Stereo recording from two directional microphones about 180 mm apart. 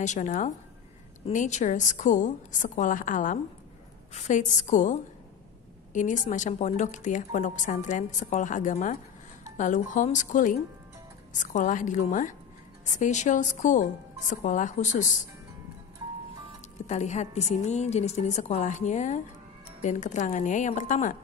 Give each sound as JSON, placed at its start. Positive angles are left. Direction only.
{"t": 0.0, "sound": "a woman's voice", "side_deg": 45}
{"t": 5.9, "sound": "a woman's voice", "side_deg": 45}
{"t": 16.8, "sound": "a woman's voice", "side_deg": 40}